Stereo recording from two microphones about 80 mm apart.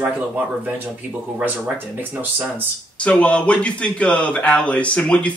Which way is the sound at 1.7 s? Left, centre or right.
Right.